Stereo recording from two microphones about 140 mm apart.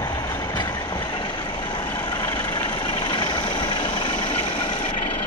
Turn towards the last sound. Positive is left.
turn(degrees=35)  # may be behind; listen again after turning